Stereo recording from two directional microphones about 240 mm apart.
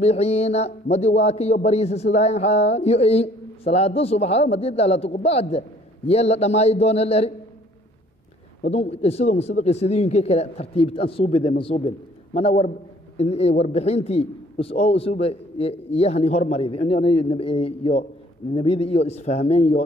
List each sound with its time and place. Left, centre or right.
0.0 s a man's voice: left
8.6 s a man's voice: left
13.2 s a man's voice: left